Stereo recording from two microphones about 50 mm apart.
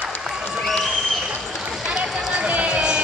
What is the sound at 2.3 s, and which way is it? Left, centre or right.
Run, right.